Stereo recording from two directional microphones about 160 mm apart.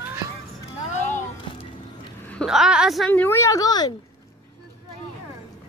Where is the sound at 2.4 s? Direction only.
5° right (ahead or behind).